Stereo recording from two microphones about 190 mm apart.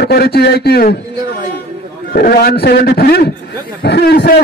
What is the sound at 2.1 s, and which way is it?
A man's voice, 50° left (ahead or behind).